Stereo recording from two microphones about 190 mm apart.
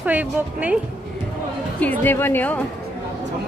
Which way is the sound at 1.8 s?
10° left (ahead or behind).